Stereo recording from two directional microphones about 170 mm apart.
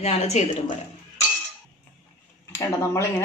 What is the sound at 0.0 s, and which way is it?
Speech, 40° left (ahead or behind).